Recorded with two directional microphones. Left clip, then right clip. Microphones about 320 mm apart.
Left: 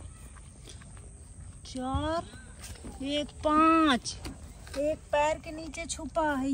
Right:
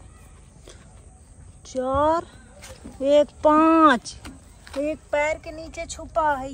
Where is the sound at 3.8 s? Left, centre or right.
Centre.